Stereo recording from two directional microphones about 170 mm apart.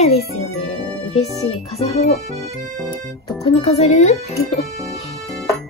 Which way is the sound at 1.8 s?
40° left (ahead or behind).